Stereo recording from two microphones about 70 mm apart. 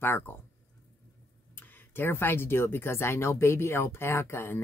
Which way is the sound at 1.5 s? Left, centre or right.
Left.